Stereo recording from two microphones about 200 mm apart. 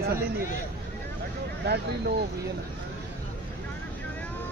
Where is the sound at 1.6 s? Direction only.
55° right (ahead or behind).